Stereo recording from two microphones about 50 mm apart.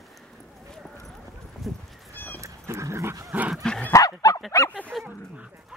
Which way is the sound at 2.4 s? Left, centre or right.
Right.